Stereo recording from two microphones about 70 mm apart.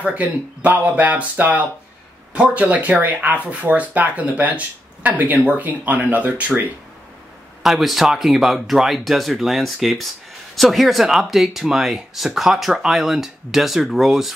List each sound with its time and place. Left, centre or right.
0.0 s speech: right
7.6 s speech: centre